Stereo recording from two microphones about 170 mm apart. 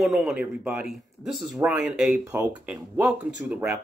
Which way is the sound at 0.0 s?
5° right (ahead or behind).